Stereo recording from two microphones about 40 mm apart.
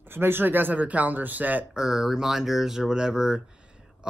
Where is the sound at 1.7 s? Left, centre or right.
Centre.